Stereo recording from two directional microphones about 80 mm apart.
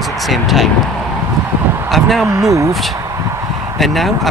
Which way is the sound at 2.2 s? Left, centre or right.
Right.